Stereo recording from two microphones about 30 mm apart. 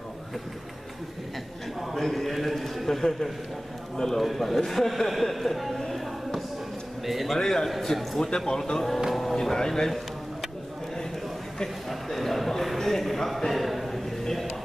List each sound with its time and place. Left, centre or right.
2.0 s speech: centre
5.9 s a sound: centre
7.1 s speech: centre
7.3 s speech: centre
7.6 s speech: centre
9.1 s music: centre
9.4 s speech: centre
9.8 s a sound: centre
11.9 s a man's voice: centre